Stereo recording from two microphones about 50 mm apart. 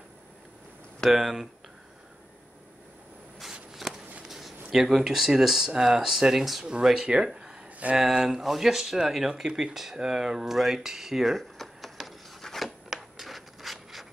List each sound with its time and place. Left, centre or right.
1.1 s speech: centre
3.7 s a sound: centre
4.6 s speech: centre
6.6 s speech: centre
11.3 s a sound: centre
13.2 s rub: centre